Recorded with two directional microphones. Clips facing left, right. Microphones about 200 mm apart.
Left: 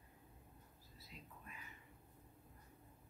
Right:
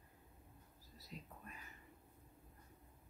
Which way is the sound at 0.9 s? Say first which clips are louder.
Right 4 dB; 40° right (ahead or behind).